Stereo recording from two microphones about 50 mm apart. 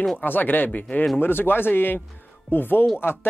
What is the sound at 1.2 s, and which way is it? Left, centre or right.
Speech, left.